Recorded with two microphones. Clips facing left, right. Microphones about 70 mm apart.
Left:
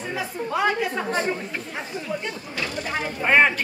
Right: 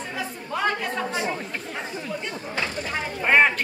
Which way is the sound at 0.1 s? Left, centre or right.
Centre.